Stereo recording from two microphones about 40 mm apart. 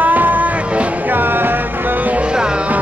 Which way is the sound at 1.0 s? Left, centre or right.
Right.